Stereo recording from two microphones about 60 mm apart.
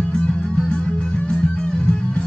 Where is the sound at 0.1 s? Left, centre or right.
Centre.